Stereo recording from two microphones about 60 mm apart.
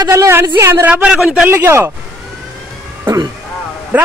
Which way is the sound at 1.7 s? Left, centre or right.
Right.